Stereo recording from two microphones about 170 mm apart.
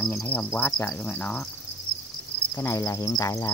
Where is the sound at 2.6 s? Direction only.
15° left (ahead or behind).